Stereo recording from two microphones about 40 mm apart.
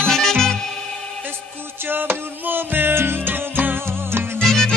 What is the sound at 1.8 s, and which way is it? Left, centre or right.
Music, right.